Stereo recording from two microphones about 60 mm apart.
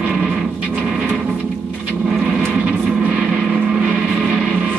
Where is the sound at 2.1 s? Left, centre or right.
Centre.